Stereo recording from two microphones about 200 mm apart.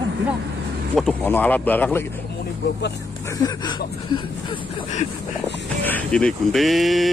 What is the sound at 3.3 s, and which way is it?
Speech, 20° left (ahead or behind).